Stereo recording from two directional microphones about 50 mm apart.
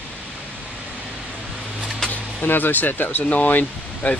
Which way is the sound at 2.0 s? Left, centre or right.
Left.